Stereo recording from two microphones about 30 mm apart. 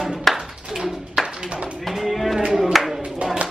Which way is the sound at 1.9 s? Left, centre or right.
Centre.